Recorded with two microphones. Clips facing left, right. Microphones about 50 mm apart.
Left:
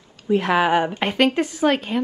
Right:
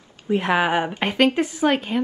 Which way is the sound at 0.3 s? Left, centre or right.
Right.